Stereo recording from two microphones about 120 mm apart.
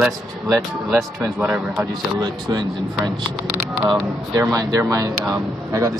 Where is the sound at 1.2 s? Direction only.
20° right (ahead or behind).